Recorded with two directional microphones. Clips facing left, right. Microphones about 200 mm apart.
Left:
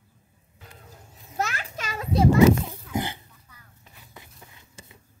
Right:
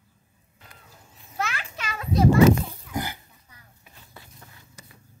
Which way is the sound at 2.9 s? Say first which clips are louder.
Left 2 dB; 25° left (ahead or behind).